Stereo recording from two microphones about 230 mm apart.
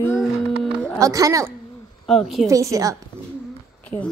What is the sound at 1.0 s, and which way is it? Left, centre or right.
Speech, centre.